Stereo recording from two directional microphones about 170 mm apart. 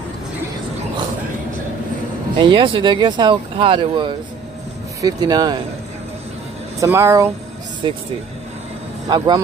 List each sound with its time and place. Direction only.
2.3 s speech: 30° right (ahead or behind)
6.8 s speech: 15° right (ahead or behind)
7.8 s speech: 30° right (ahead or behind)
9.1 s speech: 25° right (ahead or behind)